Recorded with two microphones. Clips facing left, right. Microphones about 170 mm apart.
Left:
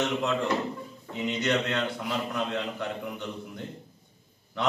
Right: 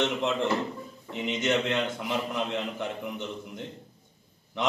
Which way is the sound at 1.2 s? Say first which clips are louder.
Even; 20° right (ahead or behind).